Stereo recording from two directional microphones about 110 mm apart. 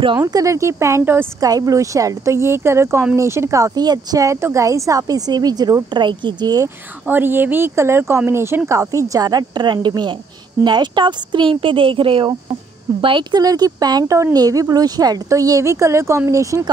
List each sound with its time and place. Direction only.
0.2 s speech: 30° right (ahead or behind)
7.1 s a woman's voice: 20° right (ahead or behind)